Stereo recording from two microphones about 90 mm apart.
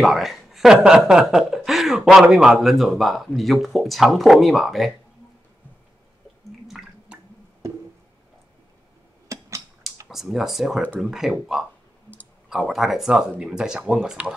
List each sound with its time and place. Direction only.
0.0 s speech: centre (ahead or behind)
6.7 s drip: 5° right (ahead or behind)
9.3 s a sound: 35° right (ahead or behind)
10.0 s speech: 5° right (ahead or behind)